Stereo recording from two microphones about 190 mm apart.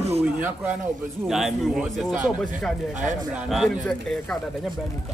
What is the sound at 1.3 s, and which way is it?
A man's voice, centre (ahead or behind).